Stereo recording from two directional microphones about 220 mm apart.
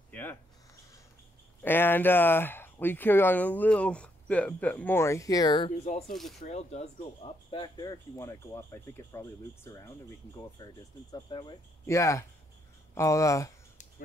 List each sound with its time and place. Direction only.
0.1 s a sound: 10° left (ahead or behind)
1.6 s speech: 10° left (ahead or behind)
5.9 s speech: 35° left (ahead or behind)
6.1 s speech: centre (ahead or behind)
6.4 s speech: 30° left (ahead or behind); by 13.5 s 15° left (ahead or behind)